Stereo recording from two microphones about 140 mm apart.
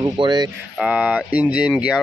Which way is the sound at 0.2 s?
30° right (ahead or behind).